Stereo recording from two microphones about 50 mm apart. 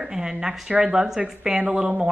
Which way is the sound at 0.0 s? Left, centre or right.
Centre.